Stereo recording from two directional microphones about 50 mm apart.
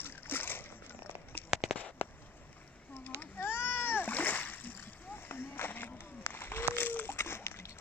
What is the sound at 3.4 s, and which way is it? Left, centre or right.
Splash, left.